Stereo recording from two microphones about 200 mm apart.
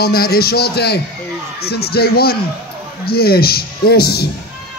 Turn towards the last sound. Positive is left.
turn(degrees=50)  # may be behind; listen again after turning